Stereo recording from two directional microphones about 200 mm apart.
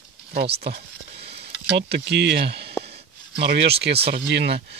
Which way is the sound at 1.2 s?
55° right (ahead or behind).